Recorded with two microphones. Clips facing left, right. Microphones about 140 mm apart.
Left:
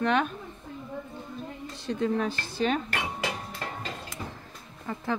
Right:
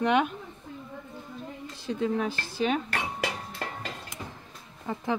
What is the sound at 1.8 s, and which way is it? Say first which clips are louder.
Speech: left 1 dB; 5° right (ahead or behind).